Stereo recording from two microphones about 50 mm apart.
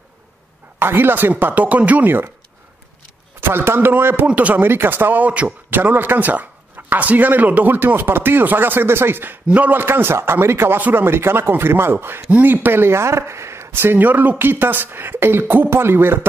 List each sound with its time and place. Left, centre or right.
0.7 s speech: right
1.4 s a man's voice: right
3.3 s a man's voice: right
4.3 s speech: right
4.6 s a man's voice: right
9.5 s speech: right
9.8 s speech: right
10.8 s a man's voice: right
11.1 s speech: right
12.3 s speech: right
13.9 s a man's voice: right